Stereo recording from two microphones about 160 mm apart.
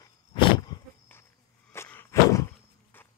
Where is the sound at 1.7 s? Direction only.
15° left (ahead or behind).